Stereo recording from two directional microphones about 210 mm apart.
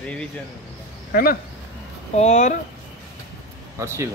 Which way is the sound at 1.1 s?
45° left (ahead or behind).